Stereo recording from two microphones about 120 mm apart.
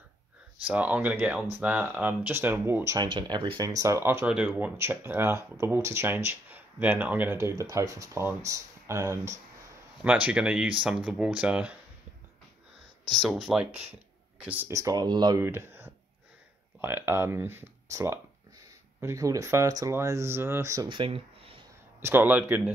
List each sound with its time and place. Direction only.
0.7 s speech: 10° right (ahead or behind)
3.0 s speech: 35° right (ahead or behind)
3.6 s speech: 25° right (ahead or behind)
10.0 s speech: 10° right (ahead or behind)
13.1 s speech: centre (ahead or behind)
14.4 s speech: 15° right (ahead or behind)
14.7 s speech: 25° right (ahead or behind)
15.4 s speech: 20° right (ahead or behind)
20.9 s speech: 45° right (ahead or behind)
22.0 s speech: 15° right (ahead or behind)